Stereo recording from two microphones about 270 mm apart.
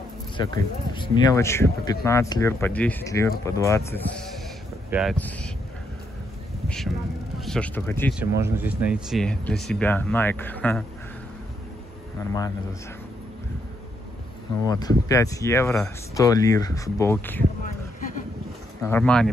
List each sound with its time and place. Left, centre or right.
0.4 s speech: centre
7.3 s speech: centre
8.1 s speech: centre
12.2 s speech: centre
14.7 s speech: centre
18.8 s speech: centre